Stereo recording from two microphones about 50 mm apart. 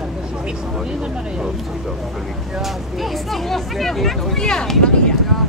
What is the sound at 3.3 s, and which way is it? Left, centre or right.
Speech, centre.